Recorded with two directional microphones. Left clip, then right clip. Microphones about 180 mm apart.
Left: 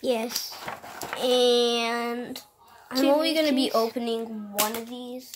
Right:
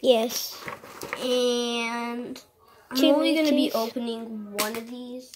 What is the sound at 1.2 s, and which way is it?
Speech, 40° left (ahead or behind).